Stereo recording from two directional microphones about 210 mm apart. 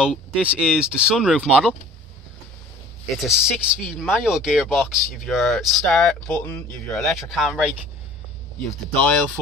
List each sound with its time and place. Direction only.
0.0 s speech: 5° right (ahead or behind)
3.2 s speech: centre (ahead or behind)